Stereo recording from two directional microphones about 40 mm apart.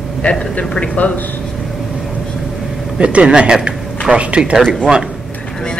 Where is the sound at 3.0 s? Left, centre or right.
Right.